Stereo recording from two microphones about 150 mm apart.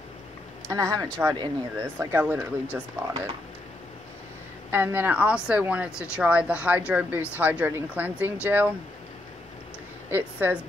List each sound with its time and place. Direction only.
0.7 s speech: 20° right (ahead or behind)
4.6 s speech: 15° right (ahead or behind)
10.0 s speech: 15° right (ahead or behind)